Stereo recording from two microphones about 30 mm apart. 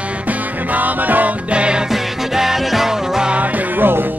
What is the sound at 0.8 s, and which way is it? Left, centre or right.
Music, right.